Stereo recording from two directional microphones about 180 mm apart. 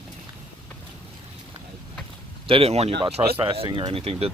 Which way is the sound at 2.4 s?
30° right (ahead or behind).